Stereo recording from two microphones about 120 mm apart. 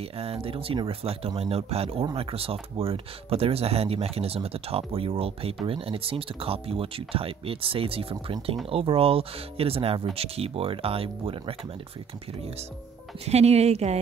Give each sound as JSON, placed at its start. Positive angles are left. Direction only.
{"t": 0.0, "sound": "speech", "side_deg": -55}
{"t": 13.2, "sound": "speech", "side_deg": -60}